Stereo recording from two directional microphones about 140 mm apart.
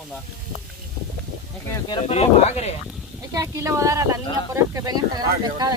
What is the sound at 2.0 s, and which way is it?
Speech, 50° left (ahead or behind).